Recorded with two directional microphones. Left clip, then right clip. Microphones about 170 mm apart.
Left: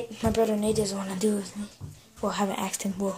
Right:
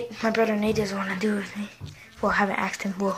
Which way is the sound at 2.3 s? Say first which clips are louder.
Right 6 dB; 15° left (ahead or behind).